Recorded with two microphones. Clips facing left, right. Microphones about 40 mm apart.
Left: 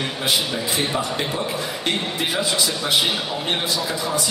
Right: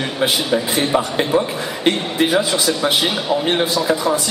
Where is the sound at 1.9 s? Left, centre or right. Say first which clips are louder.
Right 7 dB; right.